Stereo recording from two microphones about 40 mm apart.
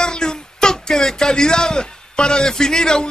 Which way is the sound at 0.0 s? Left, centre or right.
Centre.